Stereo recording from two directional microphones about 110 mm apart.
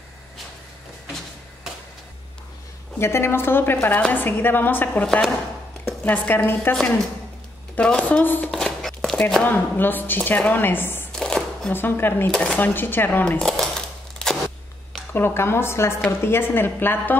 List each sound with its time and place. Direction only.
3.0 s a woman's voice: 25° left (ahead or behind)
8.5 s speech: 5° left (ahead or behind)
11.1 s chopping: 5° left (ahead or behind)
11.7 s a woman's voice: 20° left (ahead or behind)
12.3 s a woman's voice: 5° left (ahead or behind)
12.5 s a woman's voice: 15° left (ahead or behind)
13.4 s a sound: 5° left (ahead or behind)
15.1 s a woman's voice: 20° left (ahead or behind)